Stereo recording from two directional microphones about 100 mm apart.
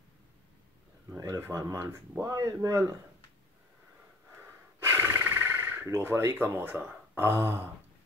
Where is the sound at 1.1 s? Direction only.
35° right (ahead or behind).